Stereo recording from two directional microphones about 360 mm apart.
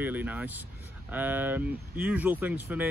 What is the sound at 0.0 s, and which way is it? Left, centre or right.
Speech, centre.